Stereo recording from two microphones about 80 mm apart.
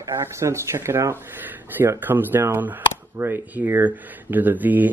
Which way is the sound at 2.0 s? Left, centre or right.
Right.